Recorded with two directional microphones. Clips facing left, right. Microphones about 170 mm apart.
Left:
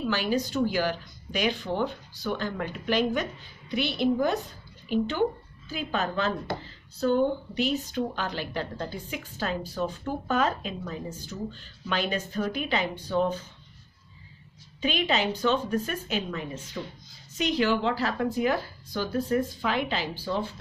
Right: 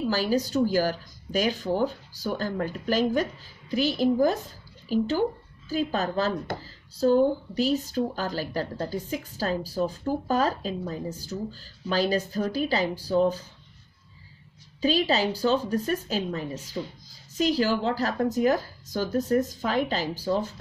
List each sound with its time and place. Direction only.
0.1 s speech: 40° right (ahead or behind)
14.8 s speech: 35° right (ahead or behind)